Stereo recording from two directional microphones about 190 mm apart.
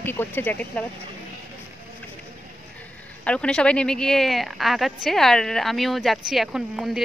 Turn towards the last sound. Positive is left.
turn(degrees=0)  # may be behind; listen again after turning